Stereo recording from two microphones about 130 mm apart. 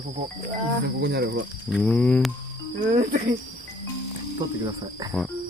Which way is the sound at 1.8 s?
10° left (ahead or behind).